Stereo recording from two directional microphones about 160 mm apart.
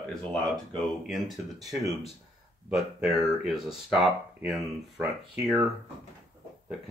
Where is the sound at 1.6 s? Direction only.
20° right (ahead or behind).